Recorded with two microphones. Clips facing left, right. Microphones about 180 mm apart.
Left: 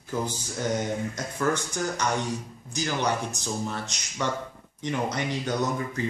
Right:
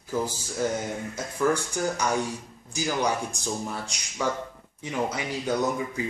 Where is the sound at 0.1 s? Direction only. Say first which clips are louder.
Right 1 dB; 5° right (ahead or behind).